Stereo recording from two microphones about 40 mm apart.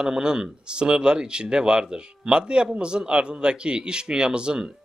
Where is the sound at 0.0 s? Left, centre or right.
Centre.